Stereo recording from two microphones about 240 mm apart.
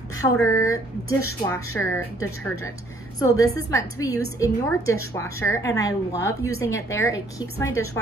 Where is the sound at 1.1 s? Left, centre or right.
Left.